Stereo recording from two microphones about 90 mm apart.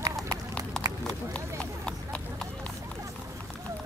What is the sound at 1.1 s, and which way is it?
Run, 10° left (ahead or behind).